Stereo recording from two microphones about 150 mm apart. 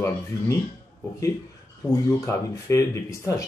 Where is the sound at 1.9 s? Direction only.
20° left (ahead or behind).